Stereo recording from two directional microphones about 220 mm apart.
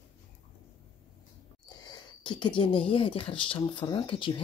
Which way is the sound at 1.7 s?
20° left (ahead or behind).